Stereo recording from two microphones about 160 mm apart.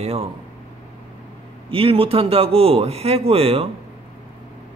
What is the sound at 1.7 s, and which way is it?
A man's voice, 35° right (ahead or behind).